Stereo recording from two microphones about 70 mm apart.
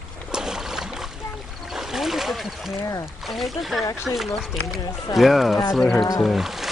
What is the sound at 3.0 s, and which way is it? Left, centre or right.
Speech, centre.